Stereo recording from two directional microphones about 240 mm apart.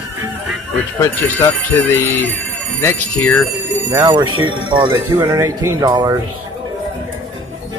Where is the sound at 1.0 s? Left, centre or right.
Centre.